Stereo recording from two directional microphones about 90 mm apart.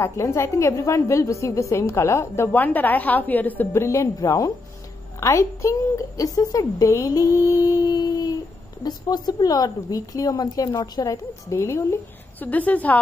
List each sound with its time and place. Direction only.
0.0 s a woman's voice: 35° left (ahead or behind)
3.7 s a woman's voice: 30° left (ahead or behind)
7.5 s a sound: 45° left (ahead or behind)
8.8 s a woman's voice: 50° left (ahead or behind)
11.5 s speech: 30° left (ahead or behind)
12.4 s a woman's voice: 15° left (ahead or behind)